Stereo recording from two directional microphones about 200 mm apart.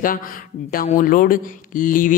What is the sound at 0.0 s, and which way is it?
A man's voice, 45° left (ahead or behind).